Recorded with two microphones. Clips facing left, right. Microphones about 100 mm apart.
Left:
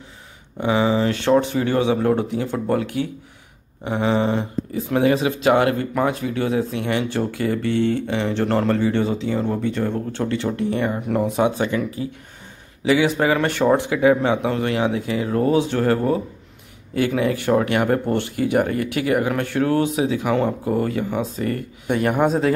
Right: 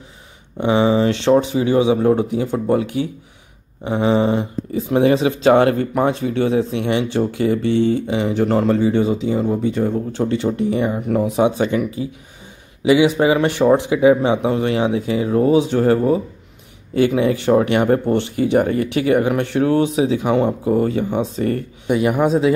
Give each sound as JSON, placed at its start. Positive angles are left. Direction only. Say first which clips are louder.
{"t": 0.6, "sound": "speech", "louder": "right 3 dB", "side_deg": -20}
{"t": 21.8, "sound": "a man's voice", "louder": "right 2 dB", "side_deg": -10}